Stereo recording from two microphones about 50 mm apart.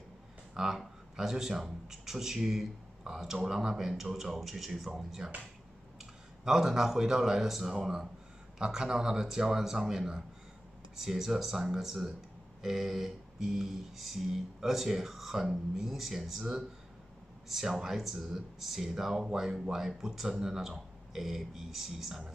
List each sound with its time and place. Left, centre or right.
0.6 s speech: centre
6.4 s speech: centre
12.6 s a sound: centre
17.5 s speech: centre